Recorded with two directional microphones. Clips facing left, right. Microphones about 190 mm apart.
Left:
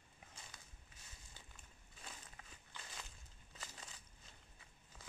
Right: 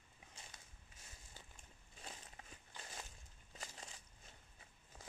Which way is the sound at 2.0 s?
35° right (ahead or behind).